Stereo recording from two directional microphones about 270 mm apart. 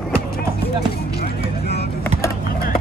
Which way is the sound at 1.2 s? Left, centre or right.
Left.